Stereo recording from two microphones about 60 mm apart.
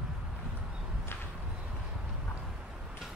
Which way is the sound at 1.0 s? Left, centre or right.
Left.